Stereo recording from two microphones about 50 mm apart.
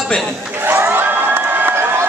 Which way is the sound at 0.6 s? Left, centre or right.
Right.